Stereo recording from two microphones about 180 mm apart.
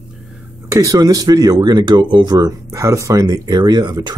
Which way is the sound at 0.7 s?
20° right (ahead or behind).